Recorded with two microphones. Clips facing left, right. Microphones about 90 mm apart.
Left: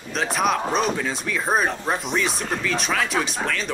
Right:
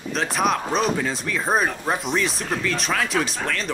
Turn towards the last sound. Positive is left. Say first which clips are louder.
# even
turn(degrees=0)  # may be behind; listen again after turning